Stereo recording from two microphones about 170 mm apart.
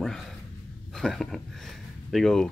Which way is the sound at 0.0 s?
Centre (ahead or behind).